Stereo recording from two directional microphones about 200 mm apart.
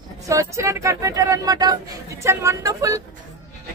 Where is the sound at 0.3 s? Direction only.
15° right (ahead or behind).